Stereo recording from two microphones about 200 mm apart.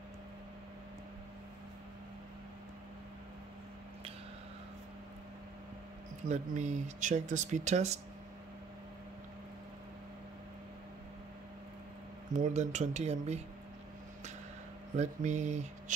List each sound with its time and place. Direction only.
6.2 s speech: 35° right (ahead or behind)
12.4 s speech: 35° right (ahead or behind)
15.0 s speech: 35° right (ahead or behind)